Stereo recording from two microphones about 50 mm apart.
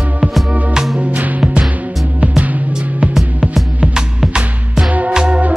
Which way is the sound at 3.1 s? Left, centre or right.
Centre.